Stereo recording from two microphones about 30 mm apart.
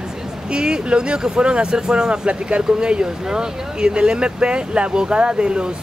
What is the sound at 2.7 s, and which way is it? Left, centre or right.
Speech, right.